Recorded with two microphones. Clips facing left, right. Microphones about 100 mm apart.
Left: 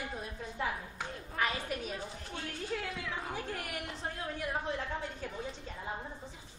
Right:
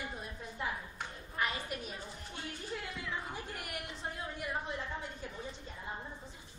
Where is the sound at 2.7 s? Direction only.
75° left (ahead or behind).